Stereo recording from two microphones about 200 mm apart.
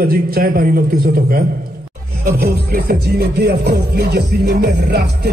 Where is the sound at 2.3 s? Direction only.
50° right (ahead or behind).